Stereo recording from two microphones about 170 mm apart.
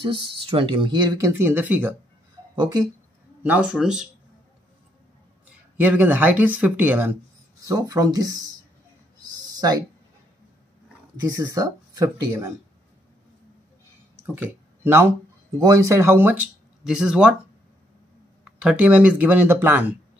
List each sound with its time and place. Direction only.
0.0 s speech: 30° right (ahead or behind); by 2.0 s 10° right (ahead or behind)
2.6 s speech: 25° right (ahead or behind)
3.4 s speech: 10° right (ahead or behind)
5.8 s speech: 10° right (ahead or behind)
9.5 s a sound: 25° right (ahead or behind)
11.1 s speech: 20° right (ahead or behind)
14.1 s speech: 10° right (ahead or behind)
18.4 s speech: 5° right (ahead or behind)